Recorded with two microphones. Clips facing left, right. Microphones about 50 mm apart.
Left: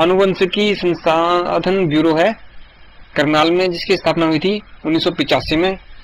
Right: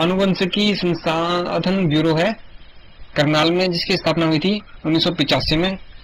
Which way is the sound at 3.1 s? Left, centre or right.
Centre.